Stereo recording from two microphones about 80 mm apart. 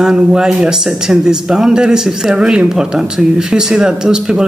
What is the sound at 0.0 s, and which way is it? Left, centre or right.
Speech, centre.